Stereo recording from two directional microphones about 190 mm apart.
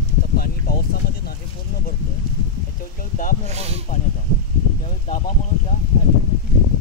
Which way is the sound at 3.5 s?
35° right (ahead or behind).